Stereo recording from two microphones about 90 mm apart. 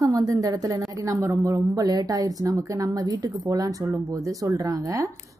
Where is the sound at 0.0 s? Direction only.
40° right (ahead or behind).